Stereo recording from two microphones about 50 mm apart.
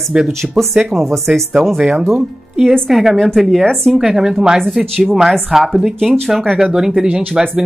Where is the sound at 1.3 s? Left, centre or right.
Centre.